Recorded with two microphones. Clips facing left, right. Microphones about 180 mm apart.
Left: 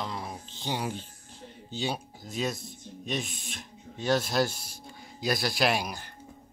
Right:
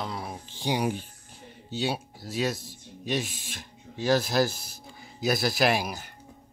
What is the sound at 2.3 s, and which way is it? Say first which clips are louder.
Speech: right 3 dB; centre (ahead or behind).